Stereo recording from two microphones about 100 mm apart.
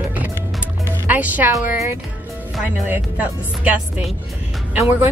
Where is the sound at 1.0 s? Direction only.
15° right (ahead or behind).